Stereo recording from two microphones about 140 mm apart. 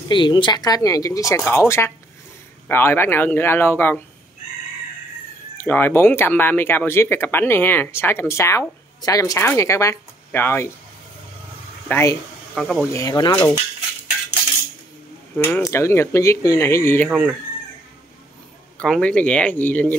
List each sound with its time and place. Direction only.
0.1 s speech: 35° left (ahead or behind); by 4.0 s 15° left (ahead or behind)
5.6 s speech: 15° left (ahead or behind)
11.9 s speech: 20° left (ahead or behind)
12.5 s speech: centre (ahead or behind)
12.9 s speech: 25° left (ahead or behind)
15.3 s speech: 15° left (ahead or behind)
17.1 s speech: 5° right (ahead or behind)
18.8 s speech: 5° left (ahead or behind)